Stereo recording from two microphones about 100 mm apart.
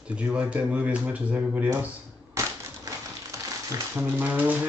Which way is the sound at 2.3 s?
30° right (ahead or behind).